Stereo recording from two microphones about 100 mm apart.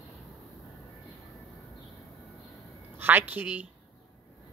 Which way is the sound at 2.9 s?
20° right (ahead or behind).